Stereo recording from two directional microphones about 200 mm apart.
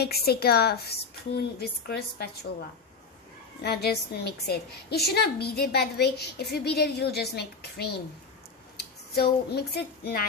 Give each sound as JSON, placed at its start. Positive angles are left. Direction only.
{"t": 0.0, "sound": "a woman's voice", "side_deg": 50}
{"t": 3.6, "sound": "a woman's voice", "side_deg": 55}